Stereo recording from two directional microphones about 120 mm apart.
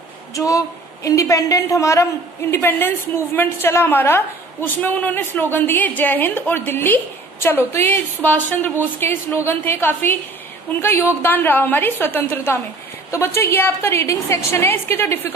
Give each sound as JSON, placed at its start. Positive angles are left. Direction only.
{"t": 0.3, "sound": "a woman's voice", "side_deg": 25}